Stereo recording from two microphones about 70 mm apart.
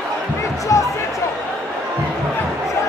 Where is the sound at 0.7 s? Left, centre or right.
Left.